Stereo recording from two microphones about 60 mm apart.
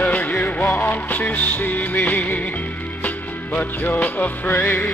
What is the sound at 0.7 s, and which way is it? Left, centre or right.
Music, left.